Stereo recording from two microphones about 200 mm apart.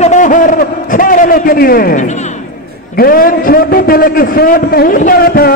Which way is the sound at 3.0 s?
45° left (ahead or behind).